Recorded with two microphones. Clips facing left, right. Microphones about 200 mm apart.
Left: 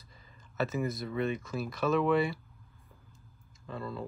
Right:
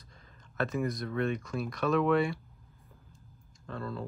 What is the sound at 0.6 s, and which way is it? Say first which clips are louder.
Speech: right 1 dB; 5° left (ahead or behind).